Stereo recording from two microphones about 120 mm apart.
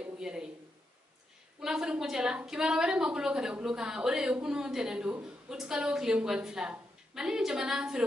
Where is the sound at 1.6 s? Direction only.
5° right (ahead or behind).